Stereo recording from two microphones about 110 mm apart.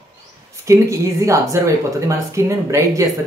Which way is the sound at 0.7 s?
30° right (ahead or behind).